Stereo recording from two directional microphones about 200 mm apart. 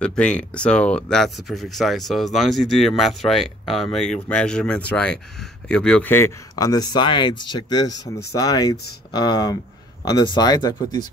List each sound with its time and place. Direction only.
0.0 s speech: 5° left (ahead or behind)